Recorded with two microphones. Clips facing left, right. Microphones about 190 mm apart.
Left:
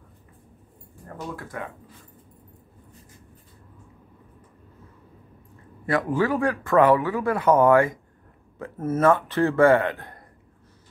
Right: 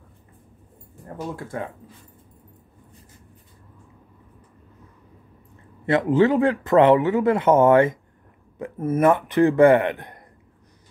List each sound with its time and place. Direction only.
1.3 s speech: 25° right (ahead or behind)
5.9 s speech: 20° right (ahead or behind)